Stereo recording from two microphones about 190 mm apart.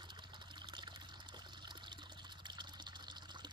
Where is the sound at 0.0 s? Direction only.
25° right (ahead or behind).